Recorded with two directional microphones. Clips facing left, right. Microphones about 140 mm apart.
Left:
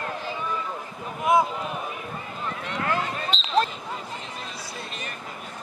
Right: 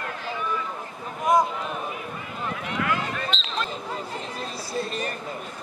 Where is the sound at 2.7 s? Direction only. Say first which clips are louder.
Even; 35° left (ahead or behind).